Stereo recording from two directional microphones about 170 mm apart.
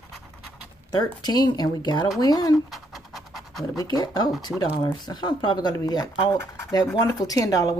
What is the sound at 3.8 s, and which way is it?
Speech, 25° left (ahead or behind).